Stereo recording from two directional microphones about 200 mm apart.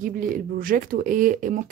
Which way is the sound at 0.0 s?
45° right (ahead or behind).